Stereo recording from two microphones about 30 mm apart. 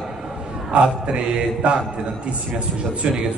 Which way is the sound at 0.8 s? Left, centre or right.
Right.